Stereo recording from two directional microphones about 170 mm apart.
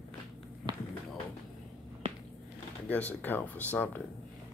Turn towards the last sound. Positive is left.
turn(degrees=10)  # may be behind; listen again after turning